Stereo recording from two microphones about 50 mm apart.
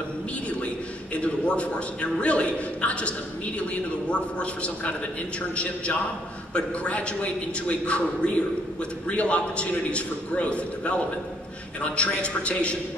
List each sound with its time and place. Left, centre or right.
1.1 s a man's voice: left
6.5 s a man's voice: left